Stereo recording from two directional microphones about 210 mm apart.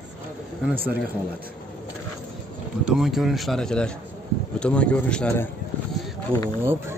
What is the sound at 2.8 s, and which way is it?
Speech, centre (ahead or behind).